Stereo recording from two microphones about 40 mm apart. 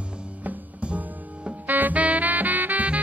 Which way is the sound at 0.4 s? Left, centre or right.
Right.